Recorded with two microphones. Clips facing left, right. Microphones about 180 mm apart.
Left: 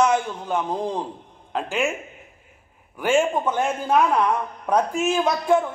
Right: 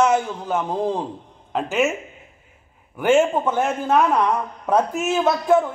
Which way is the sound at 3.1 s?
5° right (ahead or behind).